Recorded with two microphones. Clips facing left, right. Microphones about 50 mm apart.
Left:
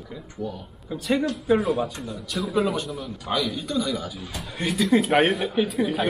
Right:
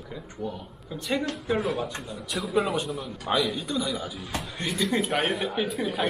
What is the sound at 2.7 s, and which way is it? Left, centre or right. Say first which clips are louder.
A man's voice: even; right.